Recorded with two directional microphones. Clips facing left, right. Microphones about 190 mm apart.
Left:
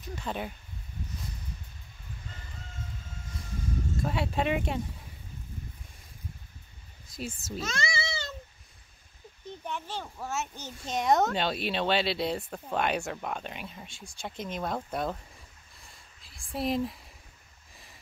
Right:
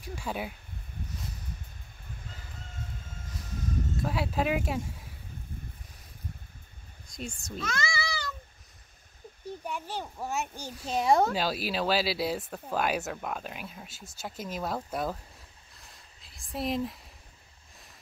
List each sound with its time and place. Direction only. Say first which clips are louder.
0.0 s speech: even; 10° right (ahead or behind)
3.9 s a child's voice: left 1 dB; centre (ahead or behind)
7.1 s speech: left 2 dB; 5° left (ahead or behind)
7.5 s a sound: even; 25° left (ahead or behind)
9.7 s a child's voice: even; 10° right (ahead or behind)
15.8 s a sound: even; centre (ahead or behind)